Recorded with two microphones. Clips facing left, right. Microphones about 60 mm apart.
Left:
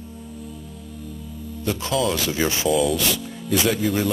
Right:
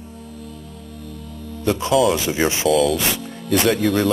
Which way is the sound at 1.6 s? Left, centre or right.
Right.